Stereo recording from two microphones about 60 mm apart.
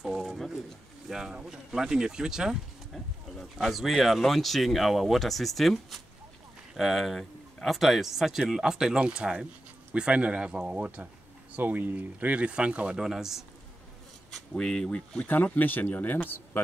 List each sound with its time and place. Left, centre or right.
0.0 s a sound: centre
1.0 s speech: centre
13.0 s speech: centre
14.3 s speech: centre
15.2 s speech: left